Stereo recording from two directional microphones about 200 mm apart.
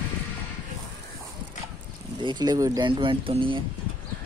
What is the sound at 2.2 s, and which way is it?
Speech, 20° right (ahead or behind).